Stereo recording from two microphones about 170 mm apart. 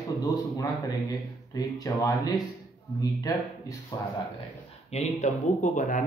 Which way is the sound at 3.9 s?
25° left (ahead or behind).